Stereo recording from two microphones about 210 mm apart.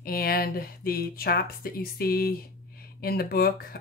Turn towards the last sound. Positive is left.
turn(degrees=45)  # may be behind; listen again after turning